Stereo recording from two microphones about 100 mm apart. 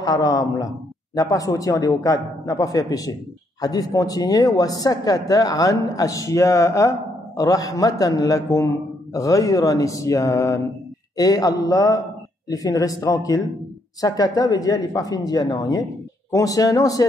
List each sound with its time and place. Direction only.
0.0 s speech: 40° left (ahead or behind)